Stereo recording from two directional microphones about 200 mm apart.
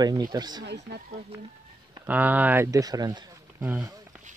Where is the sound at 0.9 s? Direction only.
55° right (ahead or behind).